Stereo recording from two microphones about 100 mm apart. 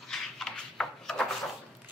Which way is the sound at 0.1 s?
5° left (ahead or behind).